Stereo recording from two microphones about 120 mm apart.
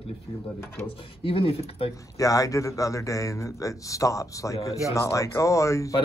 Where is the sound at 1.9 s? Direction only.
30° left (ahead or behind).